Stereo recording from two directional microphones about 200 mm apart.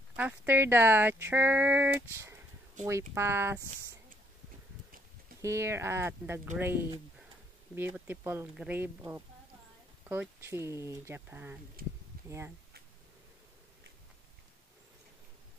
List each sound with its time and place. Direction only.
0.1 s speech: 10° right (ahead or behind)
5.4 s speech: 15° right (ahead or behind)
11.8 s a sound: 45° right (ahead or behind)
12.3 s speech: 15° right (ahead or behind)